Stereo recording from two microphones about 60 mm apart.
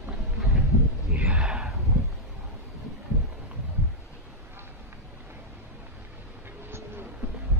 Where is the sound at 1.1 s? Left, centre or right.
Centre.